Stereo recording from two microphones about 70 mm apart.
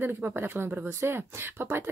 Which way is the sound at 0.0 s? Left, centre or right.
Right.